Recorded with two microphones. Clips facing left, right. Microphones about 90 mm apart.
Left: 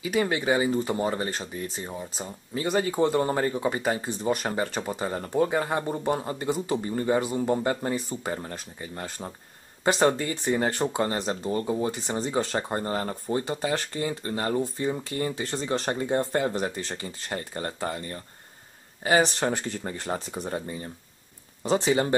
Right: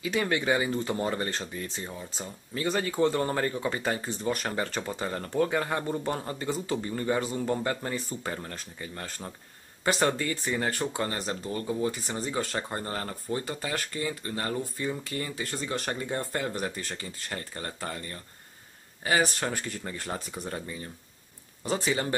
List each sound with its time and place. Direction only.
0.0 s speech: 10° left (ahead or behind); by 22.1 s 25° left (ahead or behind)